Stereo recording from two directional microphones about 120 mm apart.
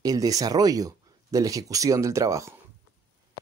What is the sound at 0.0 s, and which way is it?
Speech, 30° right (ahead or behind).